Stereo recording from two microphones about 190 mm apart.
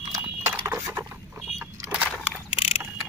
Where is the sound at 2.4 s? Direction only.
30° left (ahead or behind).